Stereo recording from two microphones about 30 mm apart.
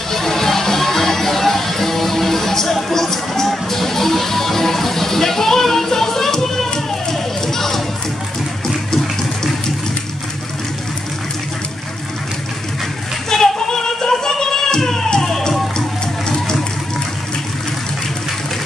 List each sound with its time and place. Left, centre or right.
0.1 s music: centre
13.3 s music: centre